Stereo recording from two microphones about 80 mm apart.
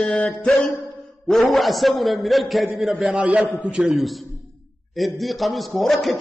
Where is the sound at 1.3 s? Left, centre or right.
Centre.